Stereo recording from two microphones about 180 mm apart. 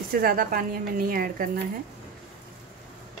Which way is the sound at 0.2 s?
55° right (ahead or behind).